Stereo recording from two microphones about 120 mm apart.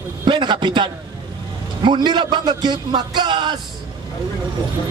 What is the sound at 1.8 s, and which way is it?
A man's voice, 40° right (ahead or behind).